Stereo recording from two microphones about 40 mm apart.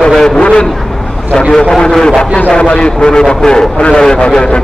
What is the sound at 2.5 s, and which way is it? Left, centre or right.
A man's voice, left.